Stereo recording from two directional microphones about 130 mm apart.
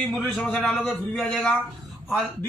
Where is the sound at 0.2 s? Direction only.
5° left (ahead or behind).